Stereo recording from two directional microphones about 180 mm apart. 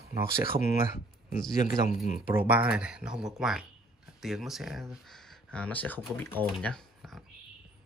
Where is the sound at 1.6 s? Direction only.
45° left (ahead or behind).